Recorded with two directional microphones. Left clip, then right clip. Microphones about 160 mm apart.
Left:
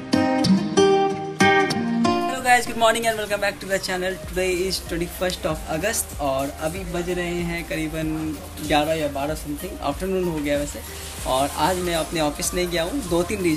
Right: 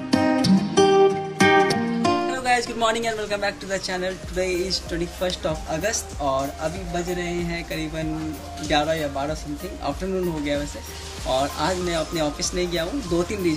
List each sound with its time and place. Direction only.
0.1 s music: centre (ahead or behind)
7.2 s speech: centre (ahead or behind)
11.2 s speech: 5° right (ahead or behind)